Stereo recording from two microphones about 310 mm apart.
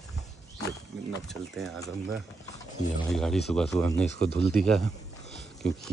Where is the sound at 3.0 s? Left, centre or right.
Centre.